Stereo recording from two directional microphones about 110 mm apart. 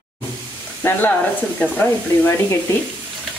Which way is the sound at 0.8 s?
15° left (ahead or behind).